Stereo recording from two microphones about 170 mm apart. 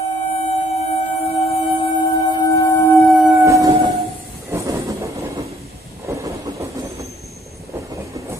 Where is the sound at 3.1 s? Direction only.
Centre (ahead or behind).